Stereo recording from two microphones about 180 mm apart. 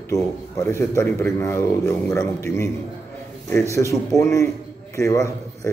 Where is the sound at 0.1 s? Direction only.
15° left (ahead or behind).